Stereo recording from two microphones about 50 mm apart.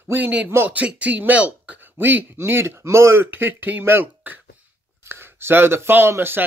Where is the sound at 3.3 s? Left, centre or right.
Right.